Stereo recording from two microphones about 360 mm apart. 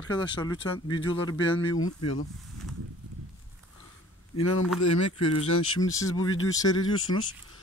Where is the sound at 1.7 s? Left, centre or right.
Left.